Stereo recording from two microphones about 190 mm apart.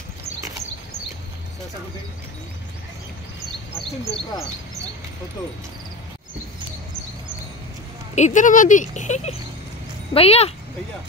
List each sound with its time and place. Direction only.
8.1 s speech: 40° left (ahead or behind)